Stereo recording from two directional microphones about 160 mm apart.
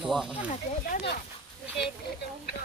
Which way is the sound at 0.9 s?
85° left.